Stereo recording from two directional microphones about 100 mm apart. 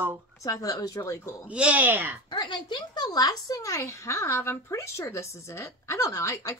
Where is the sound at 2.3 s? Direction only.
45° left (ahead or behind).